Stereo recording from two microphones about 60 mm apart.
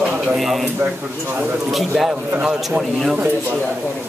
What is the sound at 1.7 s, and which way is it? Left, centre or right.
Speech, centre.